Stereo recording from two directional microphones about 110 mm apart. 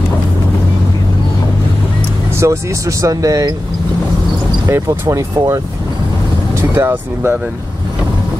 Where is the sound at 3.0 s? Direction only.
30° right (ahead or behind).